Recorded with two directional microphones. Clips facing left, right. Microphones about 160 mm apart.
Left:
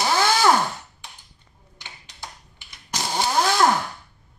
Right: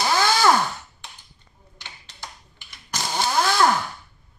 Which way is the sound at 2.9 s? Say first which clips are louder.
Left 1 dB; 20° left (ahead or behind).